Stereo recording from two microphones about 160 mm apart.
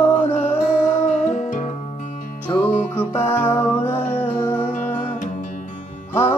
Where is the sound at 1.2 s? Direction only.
50° left (ahead or behind).